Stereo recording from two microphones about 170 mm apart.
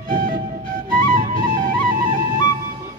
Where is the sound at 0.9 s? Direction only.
55° right (ahead or behind).